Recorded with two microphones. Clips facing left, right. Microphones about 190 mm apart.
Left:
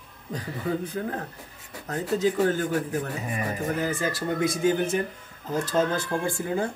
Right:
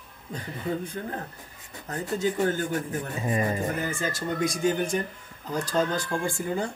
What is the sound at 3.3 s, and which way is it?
Speech, 25° right (ahead or behind).